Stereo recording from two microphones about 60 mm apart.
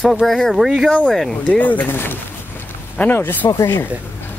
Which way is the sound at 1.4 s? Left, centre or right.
Left.